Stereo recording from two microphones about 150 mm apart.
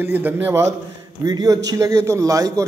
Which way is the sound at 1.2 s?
25° right (ahead or behind).